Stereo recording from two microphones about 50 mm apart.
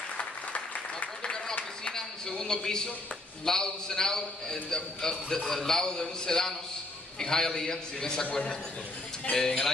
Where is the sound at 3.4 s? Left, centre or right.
Centre.